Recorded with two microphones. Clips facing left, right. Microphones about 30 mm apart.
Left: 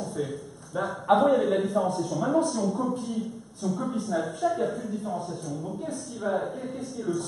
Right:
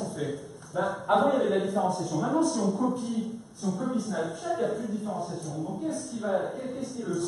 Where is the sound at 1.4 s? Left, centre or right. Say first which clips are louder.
Left 1 dB; centre.